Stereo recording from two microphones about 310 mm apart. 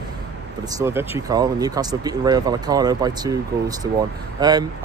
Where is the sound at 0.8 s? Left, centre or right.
Centre.